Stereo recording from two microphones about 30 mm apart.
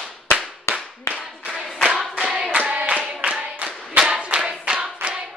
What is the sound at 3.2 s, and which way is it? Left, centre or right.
Clapping, right.